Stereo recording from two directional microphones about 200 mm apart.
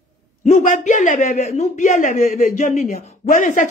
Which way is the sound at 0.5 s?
40° left (ahead or behind).